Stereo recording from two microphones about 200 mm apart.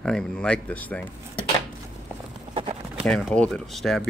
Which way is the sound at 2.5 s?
25° right (ahead or behind).